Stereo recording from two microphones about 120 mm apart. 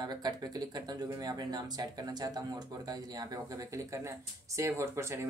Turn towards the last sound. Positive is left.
turn(degrees=-25)  # may be behind; listen again after turning